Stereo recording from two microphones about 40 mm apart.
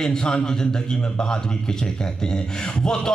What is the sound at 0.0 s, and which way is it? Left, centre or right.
Speech, centre.